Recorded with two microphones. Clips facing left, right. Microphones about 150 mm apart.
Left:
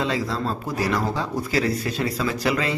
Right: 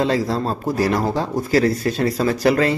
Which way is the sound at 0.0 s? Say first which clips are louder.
Right 5 dB; 40° right (ahead or behind).